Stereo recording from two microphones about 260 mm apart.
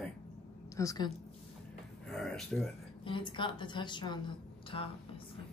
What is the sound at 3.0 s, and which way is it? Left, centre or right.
A woman's voice, centre.